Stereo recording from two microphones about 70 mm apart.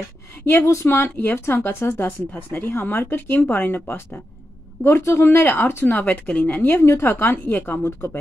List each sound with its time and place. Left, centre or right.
0.5 s speech: left
4.8 s speech: left
5.3 s a woman's voice: left